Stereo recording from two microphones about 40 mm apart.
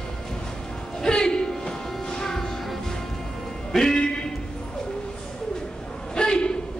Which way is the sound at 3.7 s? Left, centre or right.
Centre.